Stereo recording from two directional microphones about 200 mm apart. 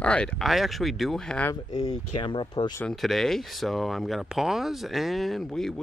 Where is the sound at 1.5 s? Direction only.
20° left (ahead or behind).